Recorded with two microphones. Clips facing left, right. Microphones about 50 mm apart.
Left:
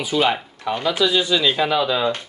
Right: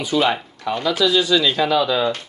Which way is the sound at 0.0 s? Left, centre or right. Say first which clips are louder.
Right 1 dB; centre.